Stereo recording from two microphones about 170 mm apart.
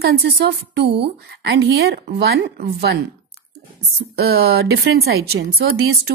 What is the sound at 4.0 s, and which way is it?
A woman's voice, 70° right (ahead or behind).